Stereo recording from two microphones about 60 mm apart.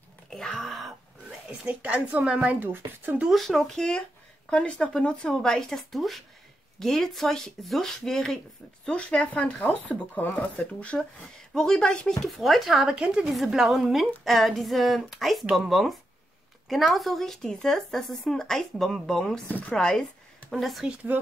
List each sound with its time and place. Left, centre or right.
0.3 s speech: centre
1.6 s a woman's voice: right
2.2 s speech: centre
3.3 s speech: centre
9.4 s speech: left
11.5 s speech: centre
12.2 s speech: centre